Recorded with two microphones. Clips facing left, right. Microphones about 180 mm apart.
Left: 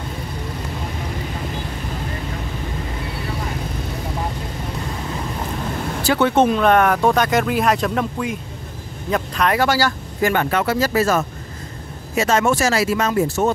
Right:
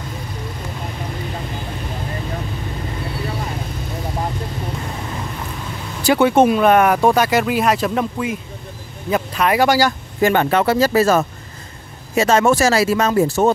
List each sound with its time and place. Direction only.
6.0 s speech: 10° right (ahead or behind)
10.3 s speech: 25° right (ahead or behind)